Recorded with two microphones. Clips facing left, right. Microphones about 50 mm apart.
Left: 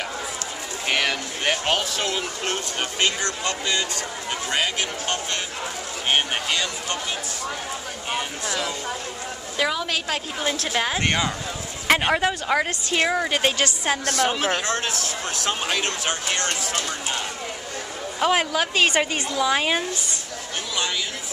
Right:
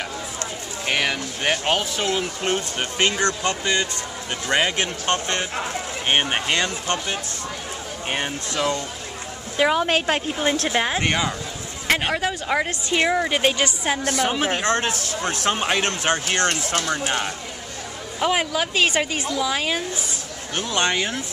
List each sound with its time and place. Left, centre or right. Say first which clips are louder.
0.8 s speech: right 1 dB; centre
3.2 s speech: right 4 dB; right
6.0 s speech: right 2 dB; right
9.6 s speech: right 5 dB; right
10.7 s a woman's voice: right 1 dB; centre
11.9 s speech: left 2 dB; centre
12.4 s a woman's voice: even; centre
14.6 s speech: right 3 dB; right
18.2 s a woman's voice: left 1 dB; centre
20.5 s speech: right 5 dB; right